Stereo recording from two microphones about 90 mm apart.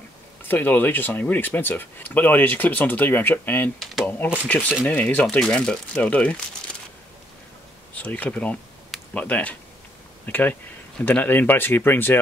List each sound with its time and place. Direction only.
0.4 s speech: 20° left (ahead or behind)
3.8 s typewriter: centre (ahead or behind)
4.5 s speech: 20° left (ahead or behind)
7.9 s speech: 15° left (ahead or behind)